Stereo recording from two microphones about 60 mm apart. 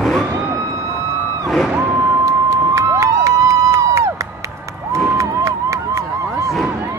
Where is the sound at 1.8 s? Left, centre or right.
Right.